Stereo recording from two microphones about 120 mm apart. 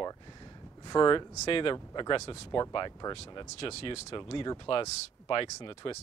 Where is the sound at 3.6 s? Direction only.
55° left (ahead or behind).